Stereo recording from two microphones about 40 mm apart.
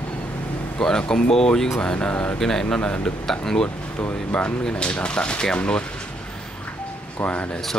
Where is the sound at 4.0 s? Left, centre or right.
Left.